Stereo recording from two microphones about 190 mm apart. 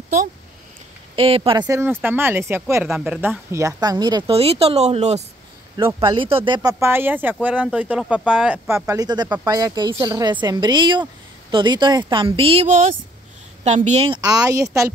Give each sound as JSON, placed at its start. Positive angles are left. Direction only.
{"t": 1.1, "sound": "speech", "side_deg": -30}
{"t": 6.7, "sound": "speech", "side_deg": -10}
{"t": 13.7, "sound": "speech", "side_deg": -35}